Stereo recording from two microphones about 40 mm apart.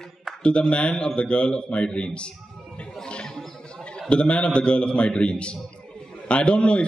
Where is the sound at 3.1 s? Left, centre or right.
Left.